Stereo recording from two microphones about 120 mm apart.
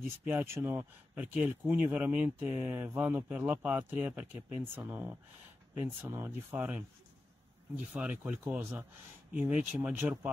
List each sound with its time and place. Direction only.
0.2 s speech: 20° right (ahead or behind)
7.9 s speech: 15° right (ahead or behind)